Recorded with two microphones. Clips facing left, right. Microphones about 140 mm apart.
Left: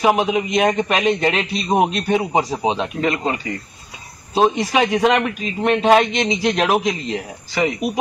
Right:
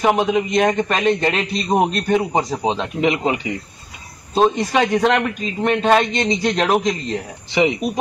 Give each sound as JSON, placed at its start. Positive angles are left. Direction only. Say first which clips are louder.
{"t": 0.0, "sound": "a man's voice", "louder": "even", "side_deg": 5}
{"t": 3.0, "sound": "speech", "louder": "right 2 dB", "side_deg": -20}
{"t": 4.4, "sound": "a man's voice", "louder": "even", "side_deg": 5}